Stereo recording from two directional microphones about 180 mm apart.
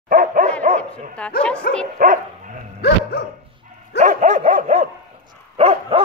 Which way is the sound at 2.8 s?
65° left (ahead or behind).